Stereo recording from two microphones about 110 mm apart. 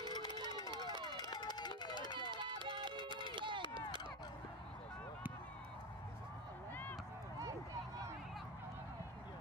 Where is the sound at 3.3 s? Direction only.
45° right (ahead or behind).